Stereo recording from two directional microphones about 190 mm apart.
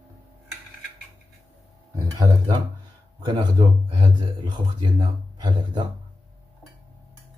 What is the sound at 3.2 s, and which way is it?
Speech, 25° right (ahead or behind).